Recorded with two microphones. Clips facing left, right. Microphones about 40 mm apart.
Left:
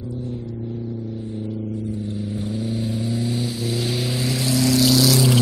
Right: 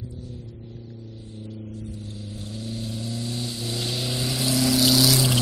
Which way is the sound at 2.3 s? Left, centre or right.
Centre.